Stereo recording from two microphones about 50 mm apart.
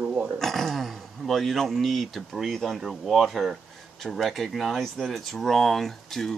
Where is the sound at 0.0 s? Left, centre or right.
Right.